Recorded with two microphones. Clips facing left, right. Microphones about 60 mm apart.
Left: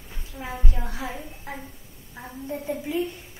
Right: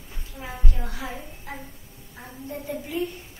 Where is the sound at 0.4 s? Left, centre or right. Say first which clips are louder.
Left 2 dB; centre.